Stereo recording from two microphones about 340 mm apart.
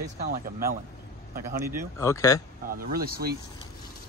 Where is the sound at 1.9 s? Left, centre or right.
Centre.